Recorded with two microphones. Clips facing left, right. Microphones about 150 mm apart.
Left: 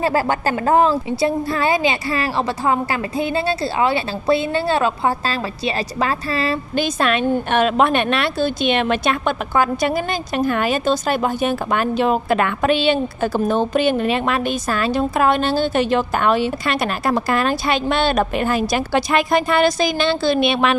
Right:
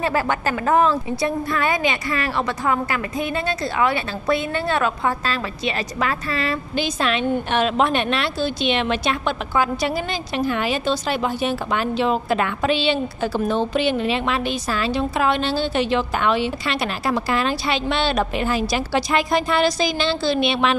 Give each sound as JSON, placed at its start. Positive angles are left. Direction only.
{"t": 0.0, "sound": "a woman's voice", "side_deg": 35}
{"t": 6.7, "sound": "a woman's voice", "side_deg": 50}